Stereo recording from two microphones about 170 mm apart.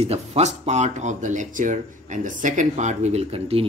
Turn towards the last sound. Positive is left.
turn(degrees=-35)  # may be behind; listen again after turning